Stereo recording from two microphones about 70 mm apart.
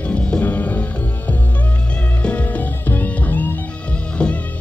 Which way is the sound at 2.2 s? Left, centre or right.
Centre.